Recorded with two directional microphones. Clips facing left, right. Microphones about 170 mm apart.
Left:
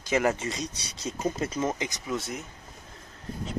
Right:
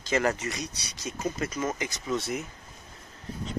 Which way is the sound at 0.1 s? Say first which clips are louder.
Left 1 dB; 15° left (ahead or behind).